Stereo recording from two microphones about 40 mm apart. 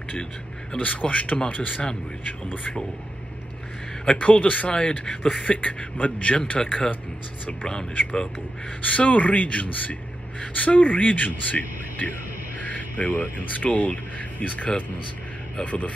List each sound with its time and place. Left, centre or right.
0.7 s speech: left
4.0 s speech: left
4.6 s speech: left
5.4 s speech: left
6.6 s speech: centre
8.8 s a man's voice: left